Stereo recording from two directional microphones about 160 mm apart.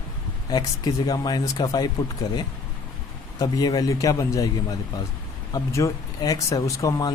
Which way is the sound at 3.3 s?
25° left (ahead or behind).